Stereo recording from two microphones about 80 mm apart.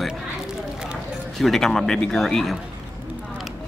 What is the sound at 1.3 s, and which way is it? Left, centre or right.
Speech, centre.